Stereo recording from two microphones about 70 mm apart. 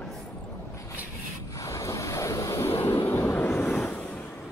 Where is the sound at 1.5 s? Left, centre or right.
Left.